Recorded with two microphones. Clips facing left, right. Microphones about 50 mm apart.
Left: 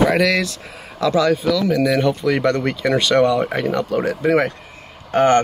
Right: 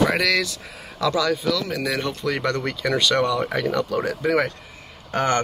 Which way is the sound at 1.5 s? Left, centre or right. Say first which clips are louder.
Left 8 dB; centre.